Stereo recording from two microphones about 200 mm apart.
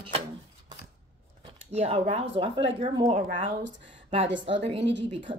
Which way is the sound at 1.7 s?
30° right (ahead or behind).